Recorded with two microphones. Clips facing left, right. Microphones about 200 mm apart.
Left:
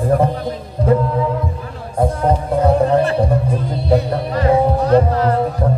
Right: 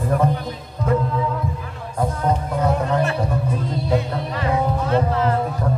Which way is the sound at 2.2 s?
30° left (ahead or behind).